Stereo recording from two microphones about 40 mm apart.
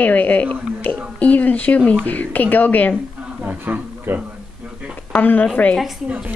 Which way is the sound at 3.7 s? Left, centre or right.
Right.